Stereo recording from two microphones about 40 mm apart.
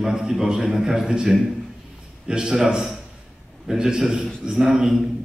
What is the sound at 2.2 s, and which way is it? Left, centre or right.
A man's voice, centre.